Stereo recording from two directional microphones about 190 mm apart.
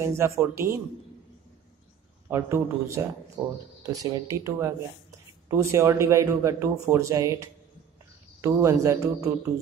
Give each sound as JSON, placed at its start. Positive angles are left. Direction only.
{"t": 0.0, "sound": "speech", "side_deg": -15}
{"t": 2.2, "sound": "speech", "side_deg": -15}